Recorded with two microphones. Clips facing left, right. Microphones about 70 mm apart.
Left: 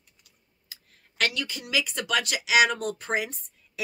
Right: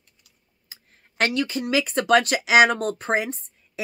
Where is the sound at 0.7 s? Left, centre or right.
Right.